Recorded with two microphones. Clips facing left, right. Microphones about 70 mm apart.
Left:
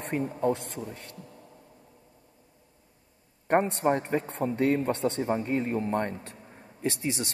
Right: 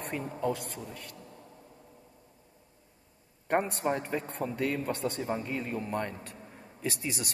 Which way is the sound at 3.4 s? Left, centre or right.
Left.